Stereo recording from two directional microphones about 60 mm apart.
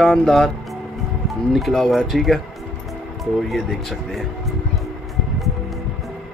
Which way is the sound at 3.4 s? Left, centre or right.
Centre.